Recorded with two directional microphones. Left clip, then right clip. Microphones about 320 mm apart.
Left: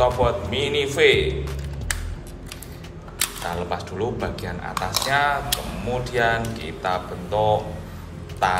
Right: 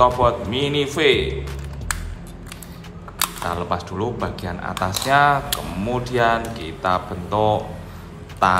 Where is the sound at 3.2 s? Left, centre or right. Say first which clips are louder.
Right 3 dB; centre.